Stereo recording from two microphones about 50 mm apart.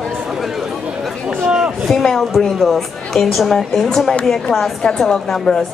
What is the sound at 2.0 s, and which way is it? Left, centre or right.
A woman's voice, centre.